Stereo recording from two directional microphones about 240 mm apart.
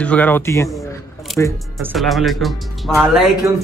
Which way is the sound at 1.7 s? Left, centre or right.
Centre.